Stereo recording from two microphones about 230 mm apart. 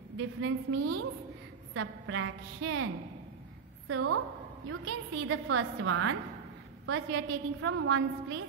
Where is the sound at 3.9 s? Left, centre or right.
Right.